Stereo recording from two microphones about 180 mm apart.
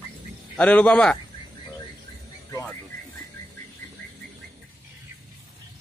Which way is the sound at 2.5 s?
10° left (ahead or behind).